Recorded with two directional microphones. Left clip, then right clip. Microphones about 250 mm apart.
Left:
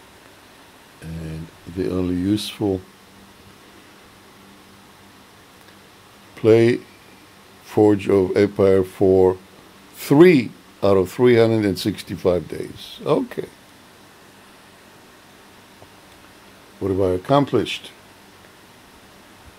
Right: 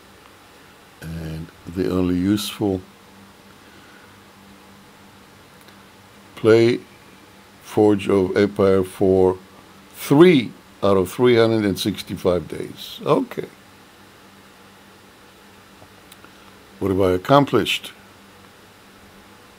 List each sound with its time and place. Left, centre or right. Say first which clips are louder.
1.8 s speech: right 2 dB; centre
6.3 s speech: even; centre
16.8 s speech: right 2 dB; centre